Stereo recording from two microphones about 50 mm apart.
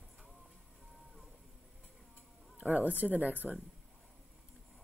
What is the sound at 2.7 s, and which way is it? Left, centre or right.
Speech, right.